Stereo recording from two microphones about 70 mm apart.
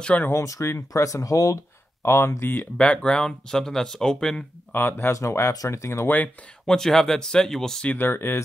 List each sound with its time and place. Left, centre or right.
0.3 s speech: left
2.0 s speech: left
2.6 s speech: centre
4.7 s speech: left
5.1 s speech: left
6.0 s speech: left
6.6 s speech: centre
7.9 s speech: left